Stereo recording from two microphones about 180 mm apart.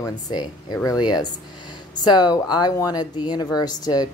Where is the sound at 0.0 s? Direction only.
20° left (ahead or behind).